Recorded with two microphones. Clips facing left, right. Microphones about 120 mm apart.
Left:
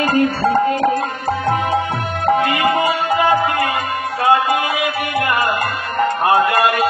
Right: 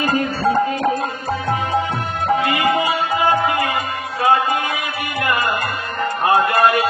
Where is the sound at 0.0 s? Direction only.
60° left (ahead or behind).